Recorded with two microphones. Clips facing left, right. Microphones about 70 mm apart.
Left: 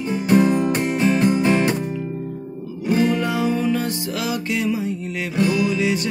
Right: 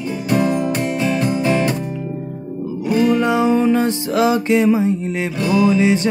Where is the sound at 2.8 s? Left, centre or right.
Left.